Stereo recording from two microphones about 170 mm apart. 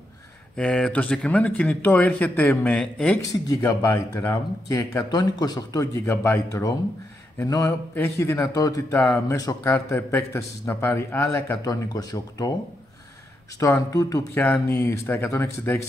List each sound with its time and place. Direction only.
0.6 s speech: 5° left (ahead or behind)
3.4 s a man's voice: 15° left (ahead or behind)
13.6 s a man's voice: 20° left (ahead or behind)